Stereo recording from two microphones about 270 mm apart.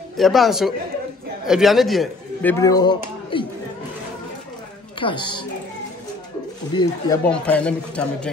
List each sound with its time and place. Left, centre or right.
0.2 s a man's voice: centre
5.0 s speech: centre
6.7 s speech: centre
7.2 s a man's voice: centre